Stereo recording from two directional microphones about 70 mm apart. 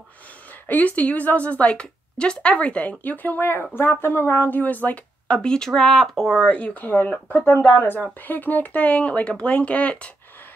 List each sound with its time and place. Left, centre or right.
0.7 s a woman's voice: left; by 6.5 s centre
6.5 s a woman's voice: left